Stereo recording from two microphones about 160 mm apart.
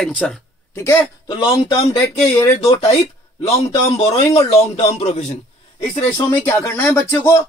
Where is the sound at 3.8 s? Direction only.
40° left (ahead or behind).